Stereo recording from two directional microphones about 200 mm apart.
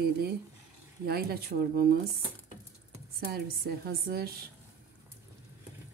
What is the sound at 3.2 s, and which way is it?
Speech, 50° right (ahead or behind).